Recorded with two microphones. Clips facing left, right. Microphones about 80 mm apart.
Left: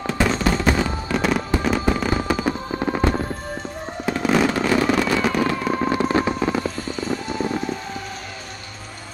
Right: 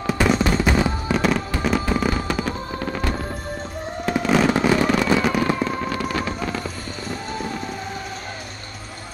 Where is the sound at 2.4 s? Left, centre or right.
Left.